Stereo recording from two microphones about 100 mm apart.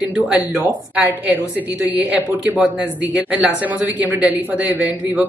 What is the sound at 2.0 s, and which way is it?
Speech, 15° right (ahead or behind).